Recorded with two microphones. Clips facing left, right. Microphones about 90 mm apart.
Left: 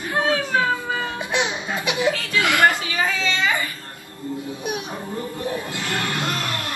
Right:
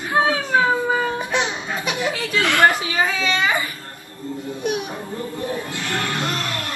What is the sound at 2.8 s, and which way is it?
Speech, 20° right (ahead or behind).